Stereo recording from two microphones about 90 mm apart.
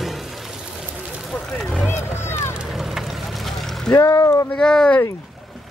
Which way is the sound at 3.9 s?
35° left (ahead or behind).